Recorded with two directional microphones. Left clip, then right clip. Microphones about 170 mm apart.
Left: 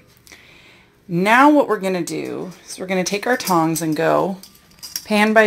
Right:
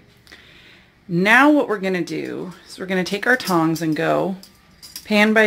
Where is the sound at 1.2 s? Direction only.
Centre (ahead or behind).